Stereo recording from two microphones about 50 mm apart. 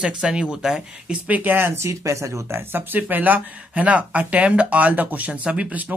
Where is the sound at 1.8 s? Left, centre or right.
Right.